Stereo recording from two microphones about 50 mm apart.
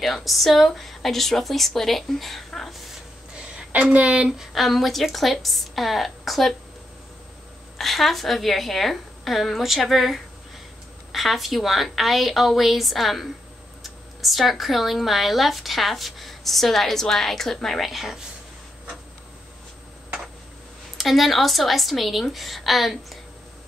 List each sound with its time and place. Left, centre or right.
0.0 s speech: centre
3.7 s speech: right
4.5 s speech: centre
7.7 s speech: centre
21.0 s speech: centre